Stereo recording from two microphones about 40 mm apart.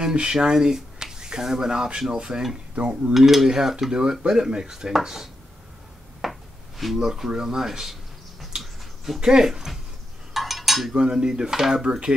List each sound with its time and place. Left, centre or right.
0.0 s speech: right
2.7 s cutlery: right
3.1 s cutlery: centre
3.4 s speech: centre
6.2 s a sound: centre
7.0 s speech: centre
8.5 s finger snapping: centre
9.2 s speech: centre
10.3 s a sound: centre
10.9 s speech: centre